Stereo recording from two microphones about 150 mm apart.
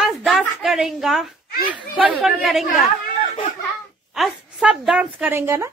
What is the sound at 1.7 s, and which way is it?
Speech, 10° right (ahead or behind).